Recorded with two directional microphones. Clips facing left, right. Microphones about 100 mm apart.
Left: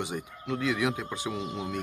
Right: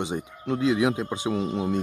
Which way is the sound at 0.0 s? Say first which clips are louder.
Right 5 dB; 25° right (ahead or behind).